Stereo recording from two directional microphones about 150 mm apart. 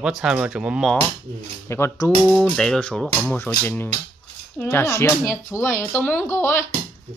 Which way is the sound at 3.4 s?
15° left (ahead or behind).